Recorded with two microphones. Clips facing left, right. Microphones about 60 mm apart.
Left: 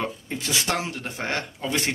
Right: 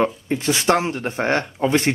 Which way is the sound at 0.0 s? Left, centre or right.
Right.